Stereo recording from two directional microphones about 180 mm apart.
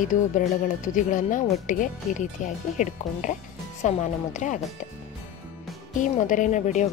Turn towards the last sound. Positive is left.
turn(degrees=40)  # may be behind; listen again after turning